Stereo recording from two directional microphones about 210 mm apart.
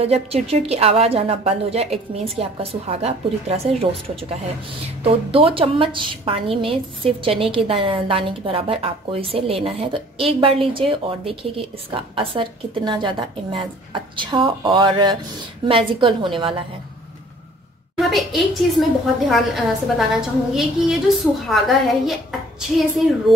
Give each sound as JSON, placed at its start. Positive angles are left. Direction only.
{"t": 0.0, "sound": "a woman's voice", "side_deg": -30}
{"t": 17.9, "sound": "a woman's voice", "side_deg": 0}